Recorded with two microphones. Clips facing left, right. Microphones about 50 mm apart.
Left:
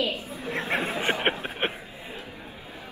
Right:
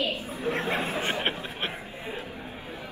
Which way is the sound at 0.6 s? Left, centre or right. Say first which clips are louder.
Left 4 dB; left.